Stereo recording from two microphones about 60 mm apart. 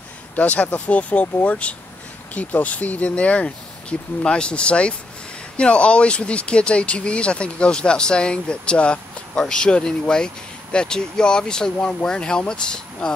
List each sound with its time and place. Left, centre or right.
0.4 s speech: left